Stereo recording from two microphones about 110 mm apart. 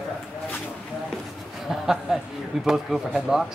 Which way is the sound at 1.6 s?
5° right (ahead or behind).